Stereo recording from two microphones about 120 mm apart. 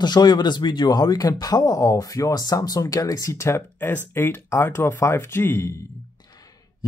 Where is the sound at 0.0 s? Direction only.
35° left (ahead or behind).